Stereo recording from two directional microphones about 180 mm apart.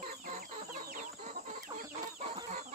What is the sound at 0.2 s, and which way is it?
Chicken, 45° right (ahead or behind).